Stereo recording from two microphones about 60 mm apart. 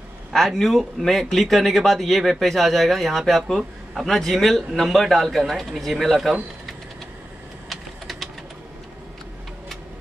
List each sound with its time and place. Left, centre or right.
0.3 s speech: centre
7.7 s typing: centre